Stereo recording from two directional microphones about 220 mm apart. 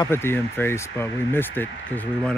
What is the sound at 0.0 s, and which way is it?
Speech, 10° left (ahead or behind).